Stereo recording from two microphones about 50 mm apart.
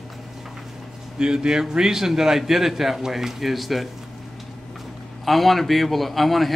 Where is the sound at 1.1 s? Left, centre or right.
Centre.